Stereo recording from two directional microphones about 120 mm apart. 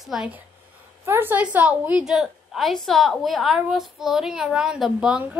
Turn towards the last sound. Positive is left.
turn(degrees=-5)  # may be behind; listen again after turning